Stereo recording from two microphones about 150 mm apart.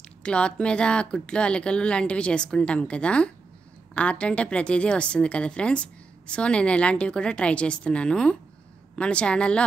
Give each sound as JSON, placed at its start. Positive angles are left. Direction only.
{"t": 0.2, "sound": "a woman's voice", "side_deg": 5}